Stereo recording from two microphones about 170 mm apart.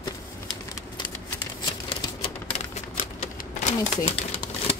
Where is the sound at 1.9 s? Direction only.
35° left (ahead or behind).